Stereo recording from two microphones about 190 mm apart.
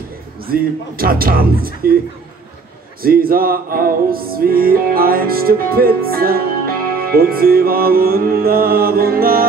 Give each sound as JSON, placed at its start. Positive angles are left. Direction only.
{"t": 0.5, "sound": "music", "side_deg": -50}
{"t": 3.0, "sound": "music", "side_deg": -50}